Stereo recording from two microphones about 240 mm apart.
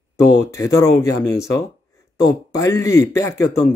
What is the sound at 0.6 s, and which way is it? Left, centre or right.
Speech, centre.